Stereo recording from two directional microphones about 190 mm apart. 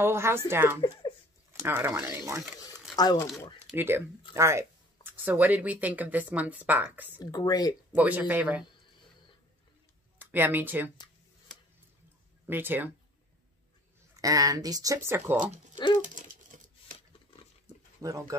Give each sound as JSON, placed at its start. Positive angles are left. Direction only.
{"t": 0.0, "sound": "speech", "side_deg": -15}
{"t": 3.0, "sound": "speech", "side_deg": 20}
{"t": 3.6, "sound": "speech", "side_deg": -10}
{"t": 7.2, "sound": "speech", "side_deg": 20}
{"t": 7.9, "sound": "speech", "side_deg": -10}
{"t": 10.3, "sound": "speech", "side_deg": -10}
{"t": 12.4, "sound": "speech", "side_deg": -10}
{"t": 14.1, "sound": "speech", "side_deg": -20}
{"t": 18.0, "sound": "speech", "side_deg": -15}